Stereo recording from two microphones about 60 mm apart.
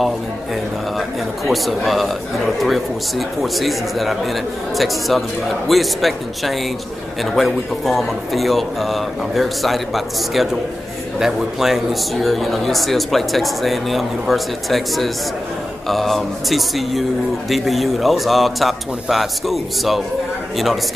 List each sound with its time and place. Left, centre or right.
0.9 s a man's voice: centre